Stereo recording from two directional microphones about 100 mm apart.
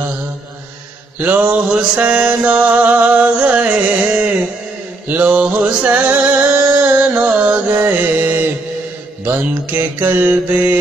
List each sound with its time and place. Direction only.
1.2 s music: 15° right (ahead or behind)
9.2 s mantra: 20° right (ahead or behind)